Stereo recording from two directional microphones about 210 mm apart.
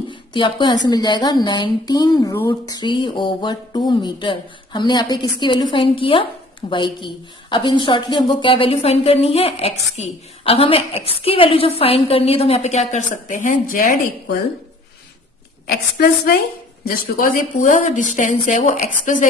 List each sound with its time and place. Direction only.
0.1 s a sound: 20° left (ahead or behind)
0.8 s speech: 20° left (ahead or behind); by 13.9 s 40° left (ahead or behind)
16.8 s speech: 45° left (ahead or behind)